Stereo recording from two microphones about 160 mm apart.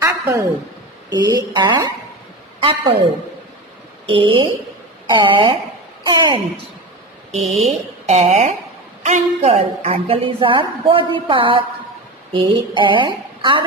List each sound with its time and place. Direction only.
0.0 s a sound: 20° right (ahead or behind)
1.1 s a woman's voice: 25° right (ahead or behind)
4.1 s a woman's voice: 30° right (ahead or behind)
7.6 s a woman's voice: 45° right (ahead or behind)